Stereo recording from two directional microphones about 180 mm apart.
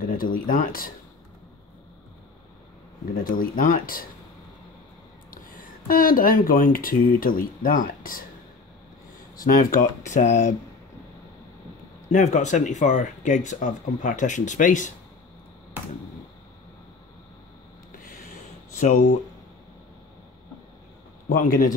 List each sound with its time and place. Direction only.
0.0 s speech: 50° left (ahead or behind)
3.3 s speech: 50° left (ahead or behind)
5.3 s speech: 50° left (ahead or behind)
9.4 s speech: 50° left (ahead or behind)
12.1 s speech: 40° left (ahead or behind)
18.8 s speech: 45° left (ahead or behind)
21.4 s speech: 50° left (ahead or behind)